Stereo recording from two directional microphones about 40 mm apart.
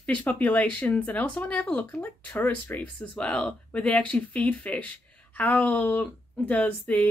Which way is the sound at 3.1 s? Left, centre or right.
Left.